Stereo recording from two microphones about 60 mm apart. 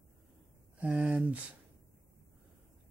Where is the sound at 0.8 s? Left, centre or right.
Right.